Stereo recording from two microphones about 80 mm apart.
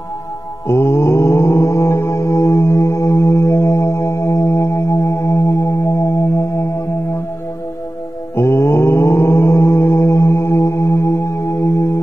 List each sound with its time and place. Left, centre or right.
0.7 s music: left
8.4 s mantra: left
11.6 s singing bowl: left